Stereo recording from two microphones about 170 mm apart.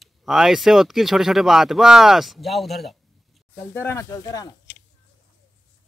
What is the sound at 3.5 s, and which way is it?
Speech, 15° left (ahead or behind).